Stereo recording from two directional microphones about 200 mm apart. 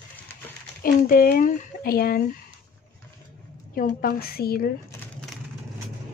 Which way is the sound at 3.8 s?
45° left (ahead or behind).